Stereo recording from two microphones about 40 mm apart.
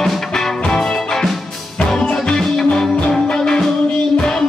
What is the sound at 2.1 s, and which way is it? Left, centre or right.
Music, centre.